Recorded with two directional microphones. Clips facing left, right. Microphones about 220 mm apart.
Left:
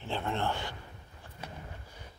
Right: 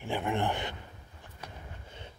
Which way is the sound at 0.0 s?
15° right (ahead or behind).